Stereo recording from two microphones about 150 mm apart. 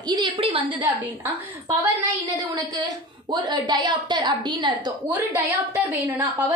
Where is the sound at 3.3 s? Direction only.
30° right (ahead or behind).